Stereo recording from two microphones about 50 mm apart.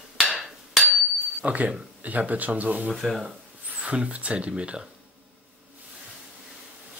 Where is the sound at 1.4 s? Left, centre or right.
Right.